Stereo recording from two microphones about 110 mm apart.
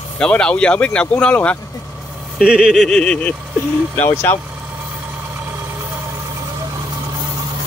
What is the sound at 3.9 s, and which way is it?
Speech, 20° left (ahead or behind).